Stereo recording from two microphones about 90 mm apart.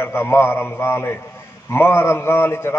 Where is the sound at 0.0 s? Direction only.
25° left (ahead or behind).